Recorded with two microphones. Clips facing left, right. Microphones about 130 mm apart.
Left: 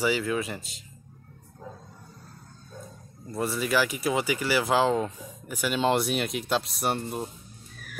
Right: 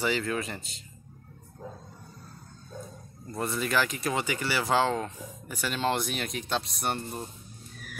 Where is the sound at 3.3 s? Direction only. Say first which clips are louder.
Left 2 dB; 5° left (ahead or behind).